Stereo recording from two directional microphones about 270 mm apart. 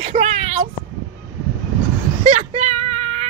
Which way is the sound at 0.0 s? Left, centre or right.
Right.